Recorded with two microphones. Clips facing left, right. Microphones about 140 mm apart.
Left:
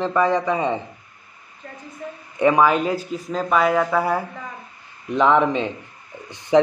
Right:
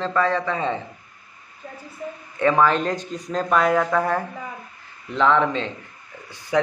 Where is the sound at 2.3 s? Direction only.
15° left (ahead or behind).